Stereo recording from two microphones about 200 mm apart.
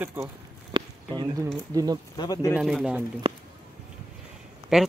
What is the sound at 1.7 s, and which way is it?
Speech, 20° right (ahead or behind).